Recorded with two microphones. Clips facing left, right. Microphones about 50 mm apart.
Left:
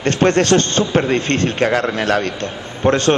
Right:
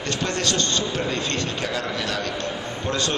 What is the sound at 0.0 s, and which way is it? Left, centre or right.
A man's voice, left.